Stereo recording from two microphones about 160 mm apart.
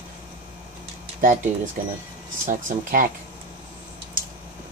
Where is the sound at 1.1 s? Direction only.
55° right (ahead or behind).